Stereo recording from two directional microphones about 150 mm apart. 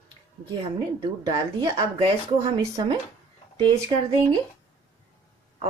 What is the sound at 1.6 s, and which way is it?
Speech, 25° right (ahead or behind).